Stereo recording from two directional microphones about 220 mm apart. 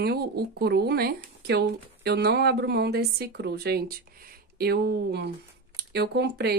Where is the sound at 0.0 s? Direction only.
45° right (ahead or behind).